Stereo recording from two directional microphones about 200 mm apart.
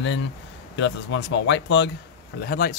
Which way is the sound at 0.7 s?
65° left (ahead or behind).